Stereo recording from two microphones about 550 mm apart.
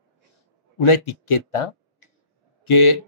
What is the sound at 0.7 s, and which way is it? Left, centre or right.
Speech, left.